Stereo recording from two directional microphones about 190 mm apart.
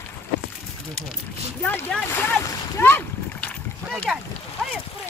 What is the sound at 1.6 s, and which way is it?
Speech, 10° left (ahead or behind).